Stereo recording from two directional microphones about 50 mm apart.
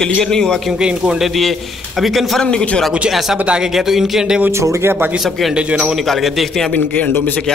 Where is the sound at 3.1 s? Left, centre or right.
Centre.